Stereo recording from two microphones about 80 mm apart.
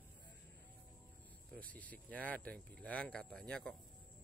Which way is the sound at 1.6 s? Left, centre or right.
Centre.